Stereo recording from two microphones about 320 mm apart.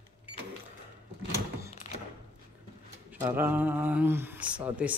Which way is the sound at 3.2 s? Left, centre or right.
Centre.